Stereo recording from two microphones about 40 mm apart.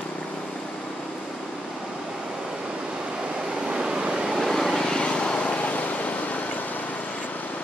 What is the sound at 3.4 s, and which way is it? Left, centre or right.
Vehicle, right.